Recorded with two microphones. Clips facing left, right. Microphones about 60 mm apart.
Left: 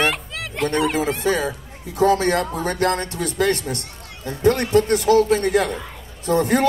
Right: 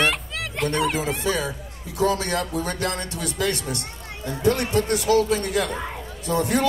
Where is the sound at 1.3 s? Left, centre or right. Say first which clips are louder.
Left 4 dB; left.